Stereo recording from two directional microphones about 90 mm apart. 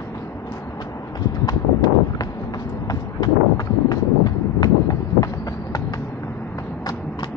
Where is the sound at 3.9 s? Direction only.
45° left (ahead or behind).